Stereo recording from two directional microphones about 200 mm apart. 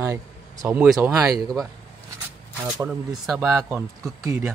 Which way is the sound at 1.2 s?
15° right (ahead or behind).